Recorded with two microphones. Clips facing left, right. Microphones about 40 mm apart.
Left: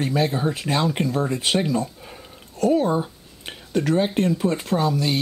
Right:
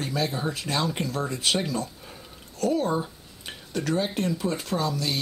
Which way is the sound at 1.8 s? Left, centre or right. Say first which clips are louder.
Left 5 dB; left.